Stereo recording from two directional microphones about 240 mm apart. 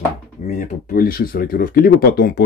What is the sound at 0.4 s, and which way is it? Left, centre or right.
Speech, left.